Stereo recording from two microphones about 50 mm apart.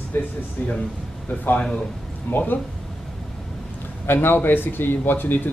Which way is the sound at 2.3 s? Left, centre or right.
Left.